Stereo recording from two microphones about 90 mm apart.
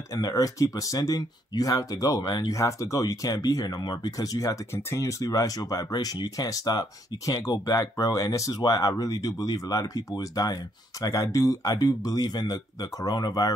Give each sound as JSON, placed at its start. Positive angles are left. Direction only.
{"t": 0.1, "sound": "speech", "side_deg": 40}
{"t": 2.5, "sound": "speech", "side_deg": 35}